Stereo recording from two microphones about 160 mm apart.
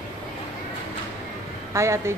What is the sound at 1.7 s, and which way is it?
Speech, 15° right (ahead or behind).